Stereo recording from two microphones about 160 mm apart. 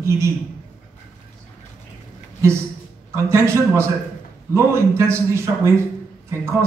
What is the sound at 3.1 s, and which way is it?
A man's voice, 15° right (ahead or behind).